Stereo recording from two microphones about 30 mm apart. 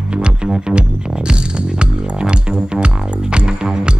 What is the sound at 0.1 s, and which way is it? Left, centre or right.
Music, right.